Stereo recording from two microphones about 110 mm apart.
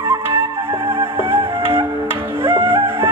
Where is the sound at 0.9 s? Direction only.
20° right (ahead or behind).